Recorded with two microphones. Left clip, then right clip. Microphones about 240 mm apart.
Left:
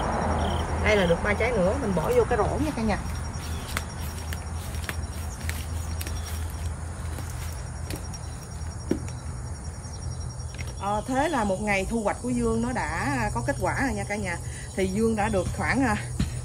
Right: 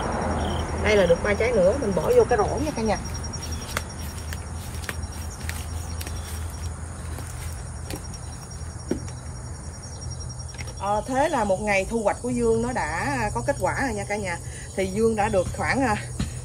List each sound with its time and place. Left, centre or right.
0.0 s quack: left
0.8 s speech: centre
10.8 s speech: centre